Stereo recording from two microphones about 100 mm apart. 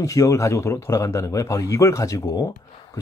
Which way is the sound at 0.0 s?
35° left (ahead or behind).